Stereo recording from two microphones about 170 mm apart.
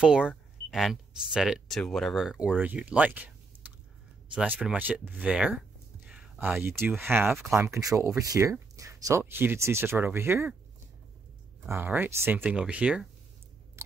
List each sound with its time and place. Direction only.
0.0 s speech: 5° right (ahead or behind)
4.3 s speech: 5° right (ahead or behind)
7.2 s speech: centre (ahead or behind)
7.5 s speech: 15° right (ahead or behind)
11.6 s speech: 15° right (ahead or behind)
13.8 s a sound: 15° right (ahead or behind)